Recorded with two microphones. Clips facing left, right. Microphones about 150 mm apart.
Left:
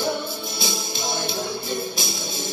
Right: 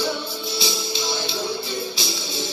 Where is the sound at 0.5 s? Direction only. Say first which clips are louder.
Right 6 dB; 50° left (ahead or behind).